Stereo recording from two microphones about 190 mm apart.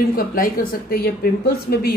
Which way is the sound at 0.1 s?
50° left (ahead or behind).